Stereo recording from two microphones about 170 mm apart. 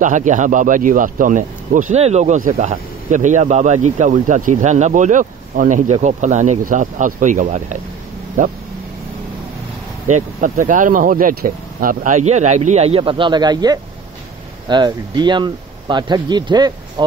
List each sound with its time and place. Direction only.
0.0 s speech: 50° right (ahead or behind)
10.0 s speech: 45° right (ahead or behind); by 17.0 s 25° right (ahead or behind)